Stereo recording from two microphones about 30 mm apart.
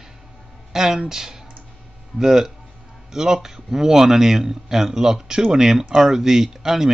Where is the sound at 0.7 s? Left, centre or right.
Centre.